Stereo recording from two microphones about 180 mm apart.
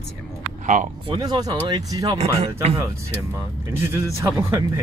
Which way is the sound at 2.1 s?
35° right (ahead or behind).